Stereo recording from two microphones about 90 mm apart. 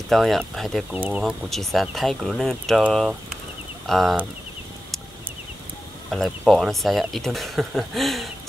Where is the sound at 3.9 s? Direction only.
5° left (ahead or behind).